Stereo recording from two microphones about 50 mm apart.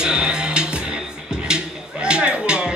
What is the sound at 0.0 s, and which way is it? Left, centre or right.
Music, centre.